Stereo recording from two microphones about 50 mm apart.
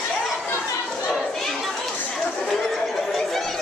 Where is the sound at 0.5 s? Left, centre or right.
Left.